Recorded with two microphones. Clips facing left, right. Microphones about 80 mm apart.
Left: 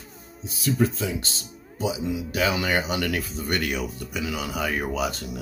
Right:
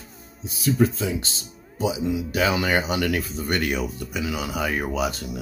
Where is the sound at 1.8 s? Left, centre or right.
Right.